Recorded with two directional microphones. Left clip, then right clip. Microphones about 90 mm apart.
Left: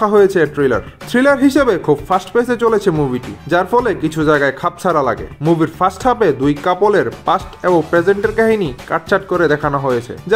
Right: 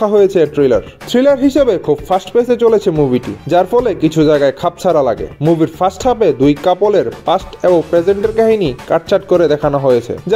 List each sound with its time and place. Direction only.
0.0 s speech: 30° right (ahead or behind)